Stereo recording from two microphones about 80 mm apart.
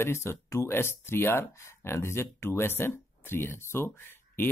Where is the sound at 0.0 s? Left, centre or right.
Left.